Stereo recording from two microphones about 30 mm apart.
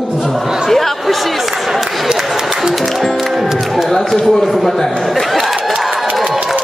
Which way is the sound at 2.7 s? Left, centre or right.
Centre.